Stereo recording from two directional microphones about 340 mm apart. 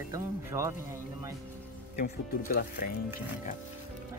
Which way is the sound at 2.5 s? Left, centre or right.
Left.